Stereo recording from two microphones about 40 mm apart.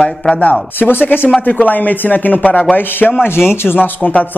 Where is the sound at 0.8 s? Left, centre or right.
Left.